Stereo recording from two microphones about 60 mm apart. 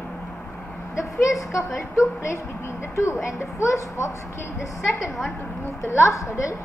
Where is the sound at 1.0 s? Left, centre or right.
Left.